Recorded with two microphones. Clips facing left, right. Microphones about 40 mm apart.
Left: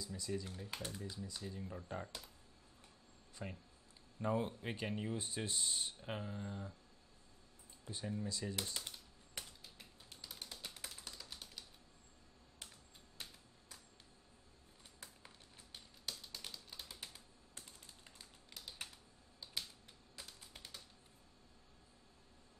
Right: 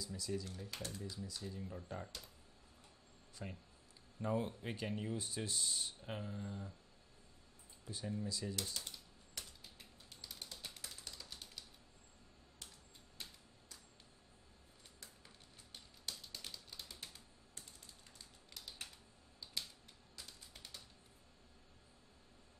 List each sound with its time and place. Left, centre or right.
0.0 s speech: centre
3.4 s speech: centre
7.8 s speech: centre
10.2 s typewriter: centre
16.1 s typing: centre